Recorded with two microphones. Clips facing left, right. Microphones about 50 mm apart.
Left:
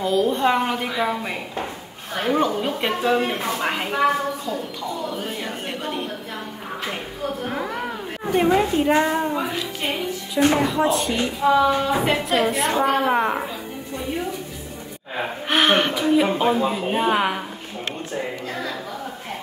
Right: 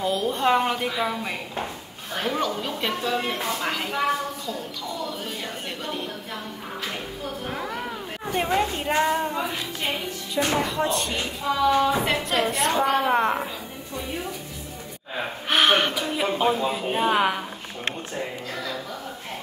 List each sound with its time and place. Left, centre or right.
0.0 s a woman's voice: centre
2.2 s a woman's voice: left
5.1 s a woman's voice: centre
8.5 s a woman's voice: centre
11.4 s a woman's voice: left
12.0 s a woman's voice: centre
15.5 s a woman's voice: centre